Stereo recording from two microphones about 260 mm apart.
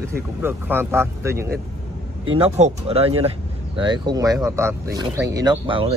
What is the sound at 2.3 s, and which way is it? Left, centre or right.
Speech, right.